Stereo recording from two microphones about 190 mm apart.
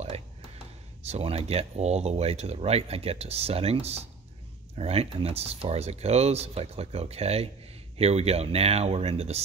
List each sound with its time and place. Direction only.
1.0 s speech: 35° right (ahead or behind)